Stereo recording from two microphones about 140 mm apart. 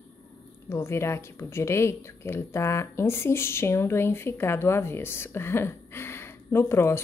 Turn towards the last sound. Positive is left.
turn(degrees=15)  # may be behind; listen again after turning